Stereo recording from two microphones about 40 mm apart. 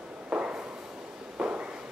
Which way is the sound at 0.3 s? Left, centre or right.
Right.